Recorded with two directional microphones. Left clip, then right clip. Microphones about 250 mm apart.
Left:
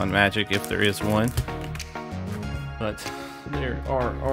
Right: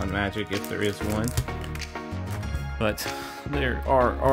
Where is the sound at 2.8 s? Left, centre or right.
Centre.